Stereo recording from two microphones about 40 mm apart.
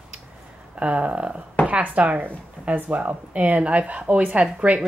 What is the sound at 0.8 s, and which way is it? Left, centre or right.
Speech, right.